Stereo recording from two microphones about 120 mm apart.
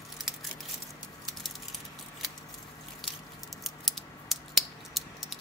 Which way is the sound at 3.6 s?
Centre (ahead or behind).